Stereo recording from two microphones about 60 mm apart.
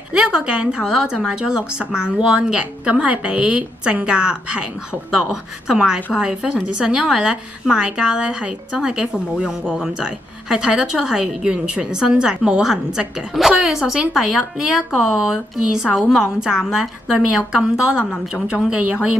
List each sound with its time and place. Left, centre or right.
0.1 s a woman's voice: centre